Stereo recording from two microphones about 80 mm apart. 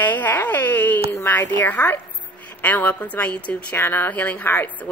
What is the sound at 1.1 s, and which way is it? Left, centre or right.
A woman's voice, left.